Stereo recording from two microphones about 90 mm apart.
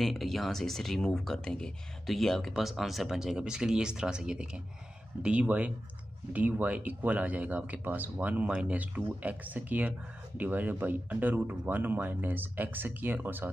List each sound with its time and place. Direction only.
0.0 s speech: 5° left (ahead or behind); by 13.5 s 20° right (ahead or behind)